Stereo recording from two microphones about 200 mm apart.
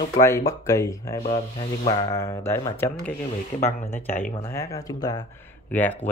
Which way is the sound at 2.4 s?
10° left (ahead or behind).